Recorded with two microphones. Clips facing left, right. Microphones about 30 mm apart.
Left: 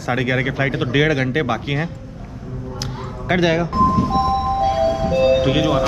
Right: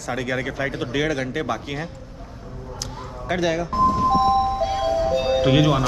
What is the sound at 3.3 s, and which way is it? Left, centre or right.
Speech, left.